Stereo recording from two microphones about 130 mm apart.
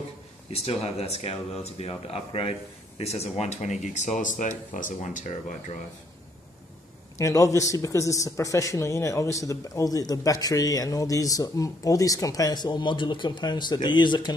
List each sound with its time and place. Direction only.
0.5 s speech: 50° left (ahead or behind)
7.2 s a man's voice: 25° left (ahead or behind)